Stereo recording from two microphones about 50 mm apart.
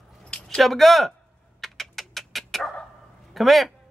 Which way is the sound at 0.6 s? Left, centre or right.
Centre.